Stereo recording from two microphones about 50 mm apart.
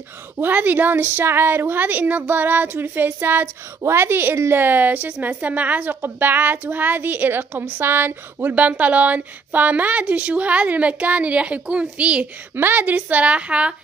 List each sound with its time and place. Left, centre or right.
0.4 s a woman's voice: right
3.8 s a woman's voice: right
7.8 s speech: right
12.5 s speech: right